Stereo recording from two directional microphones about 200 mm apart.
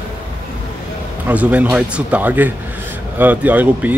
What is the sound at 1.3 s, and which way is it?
A man's voice, 5° right (ahead or behind).